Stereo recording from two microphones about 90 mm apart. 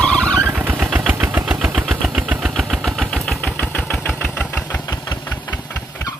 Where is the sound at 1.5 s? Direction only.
10° right (ahead or behind).